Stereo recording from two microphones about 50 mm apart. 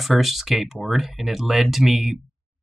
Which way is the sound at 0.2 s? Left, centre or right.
Centre.